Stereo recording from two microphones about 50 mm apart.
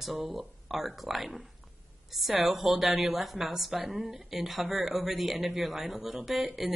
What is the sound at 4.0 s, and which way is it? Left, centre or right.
Speech, centre.